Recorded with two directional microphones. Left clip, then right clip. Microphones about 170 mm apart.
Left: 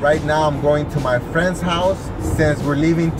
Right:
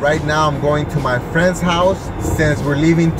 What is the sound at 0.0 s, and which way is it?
Speech, 15° right (ahead or behind).